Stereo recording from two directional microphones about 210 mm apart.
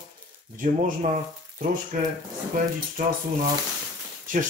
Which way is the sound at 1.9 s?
40° right (ahead or behind).